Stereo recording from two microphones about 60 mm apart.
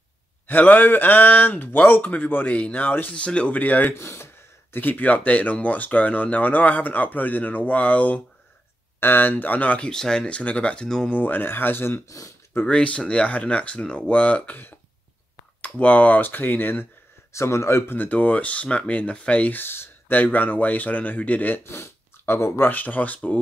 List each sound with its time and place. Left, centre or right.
0.5 s speech: left
3.1 s speech: centre
3.9 s speech: left
4.7 s speech: left
9.8 s speech: centre
10.2 s speech: left
11.1 s speech: left
12.6 s speech: centre
15.8 s speech: left
17.3 s speech: left
17.9 s speech: left
19.6 s speech: left
21.6 s speech: left